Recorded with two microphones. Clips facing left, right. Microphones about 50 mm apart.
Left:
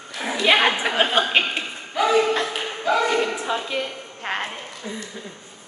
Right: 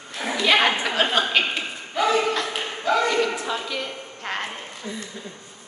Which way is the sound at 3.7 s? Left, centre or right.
Centre.